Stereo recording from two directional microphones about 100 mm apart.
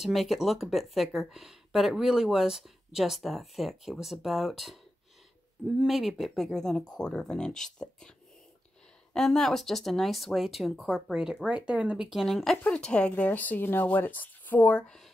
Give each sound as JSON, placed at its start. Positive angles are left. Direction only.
{"t": 0.0, "sound": "speech", "side_deg": 0}
{"t": 5.8, "sound": "speech", "side_deg": -5}
{"t": 9.1, "sound": "speech", "side_deg": 5}